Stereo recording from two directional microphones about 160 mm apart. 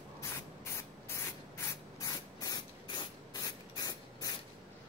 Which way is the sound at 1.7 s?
20° left (ahead or behind).